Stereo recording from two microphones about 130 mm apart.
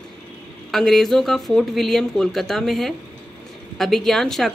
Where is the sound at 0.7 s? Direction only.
Centre (ahead or behind).